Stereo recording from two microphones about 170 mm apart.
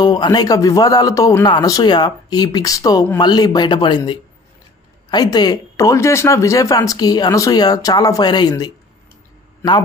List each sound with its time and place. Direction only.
0.0 s speech: 25° left (ahead or behind)